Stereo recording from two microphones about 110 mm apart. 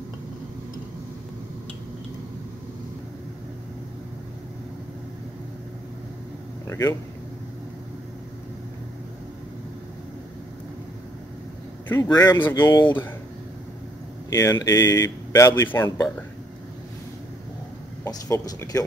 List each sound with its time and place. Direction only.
6.7 s speech: 30° left (ahead or behind)
12.0 s speech: 35° left (ahead or behind)
12.3 s speech: 20° left (ahead or behind)
12.6 s speech: 40° left (ahead or behind)
14.3 s speech: 30° left (ahead or behind)
18.0 s speech: 25° left (ahead or behind)